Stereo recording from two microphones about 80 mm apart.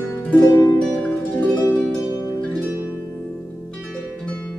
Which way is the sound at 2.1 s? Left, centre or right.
Left.